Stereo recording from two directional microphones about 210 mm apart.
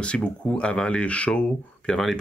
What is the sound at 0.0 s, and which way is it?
Speech, 5° left (ahead or behind).